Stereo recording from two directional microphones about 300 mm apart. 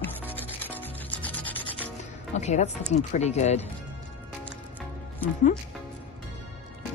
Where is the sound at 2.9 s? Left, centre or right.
Left.